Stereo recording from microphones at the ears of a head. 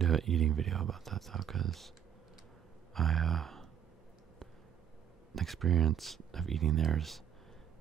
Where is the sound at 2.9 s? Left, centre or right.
Right.